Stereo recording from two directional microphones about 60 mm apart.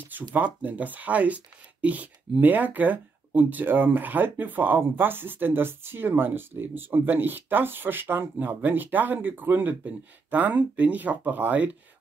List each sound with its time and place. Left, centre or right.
0.3 s speech: right